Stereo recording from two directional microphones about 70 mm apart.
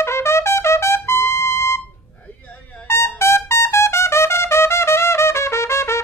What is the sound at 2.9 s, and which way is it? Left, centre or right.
Trumpet, left.